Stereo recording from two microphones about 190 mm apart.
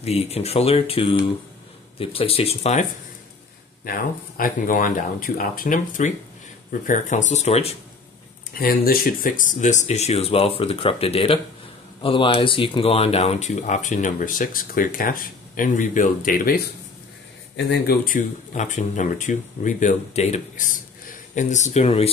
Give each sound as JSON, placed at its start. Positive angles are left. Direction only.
{"t": 0.0, "sound": "speech", "side_deg": 35}
{"t": 3.8, "sound": "speech", "side_deg": 50}
{"t": 8.5, "sound": "speech", "side_deg": 50}